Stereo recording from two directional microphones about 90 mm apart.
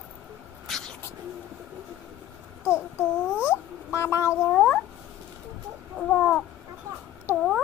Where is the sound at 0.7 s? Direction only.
5° left (ahead or behind).